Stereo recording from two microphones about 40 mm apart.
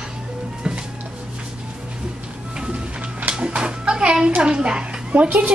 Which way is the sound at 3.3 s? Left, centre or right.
Right.